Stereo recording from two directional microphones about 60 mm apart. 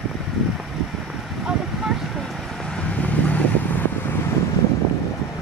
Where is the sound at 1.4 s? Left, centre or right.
Centre.